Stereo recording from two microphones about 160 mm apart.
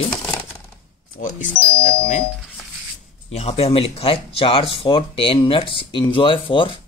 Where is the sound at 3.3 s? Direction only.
40° left (ahead or behind).